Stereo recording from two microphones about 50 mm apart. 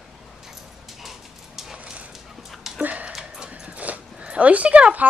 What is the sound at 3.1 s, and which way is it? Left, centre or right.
Dog, centre.